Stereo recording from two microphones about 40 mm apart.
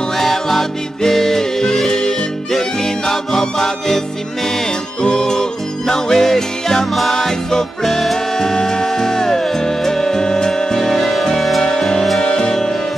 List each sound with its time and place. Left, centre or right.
0.2 s music: centre
5.0 s music: centre
12.2 s music: centre